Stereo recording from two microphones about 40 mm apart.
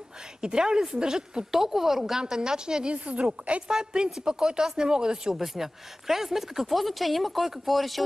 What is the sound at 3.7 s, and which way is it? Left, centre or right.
A woman's voice, centre.